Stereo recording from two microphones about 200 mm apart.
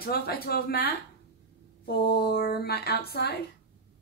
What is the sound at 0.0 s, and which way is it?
A woman's voice, 50° left (ahead or behind).